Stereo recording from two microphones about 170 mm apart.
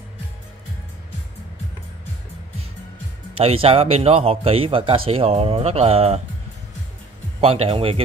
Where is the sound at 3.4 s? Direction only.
35° right (ahead or behind).